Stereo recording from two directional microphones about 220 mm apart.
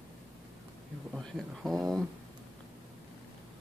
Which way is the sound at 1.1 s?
Centre (ahead or behind).